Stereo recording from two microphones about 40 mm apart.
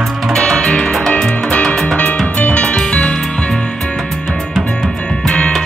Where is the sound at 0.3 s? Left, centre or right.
Centre.